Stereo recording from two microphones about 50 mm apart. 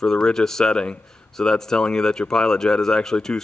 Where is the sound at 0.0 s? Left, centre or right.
Centre.